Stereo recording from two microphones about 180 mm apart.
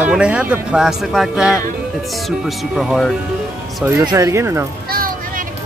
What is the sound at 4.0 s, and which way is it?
Speech, 20° right (ahead or behind).